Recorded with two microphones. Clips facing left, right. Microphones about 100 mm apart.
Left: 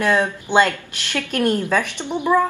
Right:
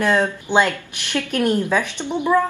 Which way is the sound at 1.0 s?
15° right (ahead or behind).